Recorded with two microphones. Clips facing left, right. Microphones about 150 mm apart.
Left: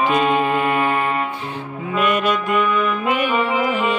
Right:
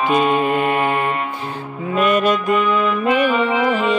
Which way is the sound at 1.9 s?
40° right (ahead or behind).